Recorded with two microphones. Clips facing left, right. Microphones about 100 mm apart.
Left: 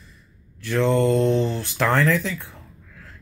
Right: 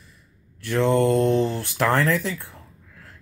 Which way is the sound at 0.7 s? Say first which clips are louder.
Even; 15° right (ahead or behind).